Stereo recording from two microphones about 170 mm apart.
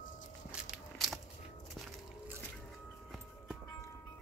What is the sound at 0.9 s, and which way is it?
Biting, centre (ahead or behind).